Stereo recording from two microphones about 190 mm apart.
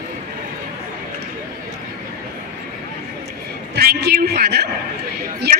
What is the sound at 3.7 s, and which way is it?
Speech, 55° right (ahead or behind).